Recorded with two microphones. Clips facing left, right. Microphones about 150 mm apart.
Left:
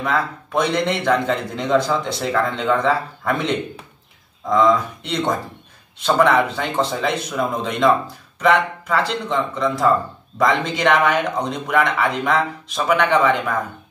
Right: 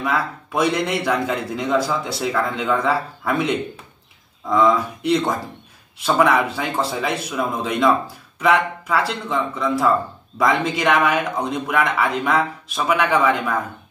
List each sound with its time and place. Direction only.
0.0 s a man's voice: 5° right (ahead or behind)